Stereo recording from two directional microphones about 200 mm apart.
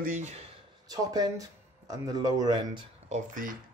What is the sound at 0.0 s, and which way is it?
Speech, 40° right (ahead or behind).